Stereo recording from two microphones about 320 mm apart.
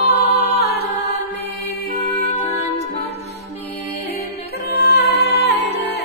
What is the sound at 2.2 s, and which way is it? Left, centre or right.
Music, centre.